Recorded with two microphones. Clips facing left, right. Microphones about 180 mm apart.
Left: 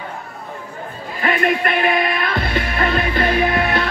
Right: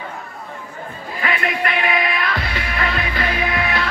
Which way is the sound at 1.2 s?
45° left (ahead or behind).